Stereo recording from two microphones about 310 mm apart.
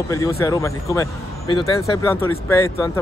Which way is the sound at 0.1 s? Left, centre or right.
Centre.